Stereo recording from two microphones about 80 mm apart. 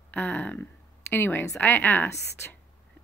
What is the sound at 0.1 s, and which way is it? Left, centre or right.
A woman's voice, left.